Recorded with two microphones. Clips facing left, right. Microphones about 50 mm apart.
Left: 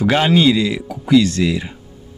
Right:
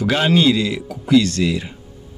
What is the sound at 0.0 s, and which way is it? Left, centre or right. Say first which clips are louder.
Speech: left 2 dB; centre.